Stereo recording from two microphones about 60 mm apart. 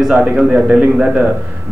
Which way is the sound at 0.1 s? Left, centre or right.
Centre.